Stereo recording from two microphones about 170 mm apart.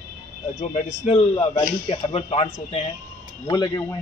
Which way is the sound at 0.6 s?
40° left (ahead or behind).